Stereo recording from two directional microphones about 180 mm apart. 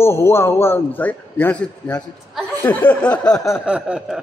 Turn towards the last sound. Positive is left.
turn(degrees=-5)  # may be behind; listen again after turning